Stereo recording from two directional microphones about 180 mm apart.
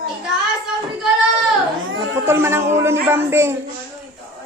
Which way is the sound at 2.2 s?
15° right (ahead or behind).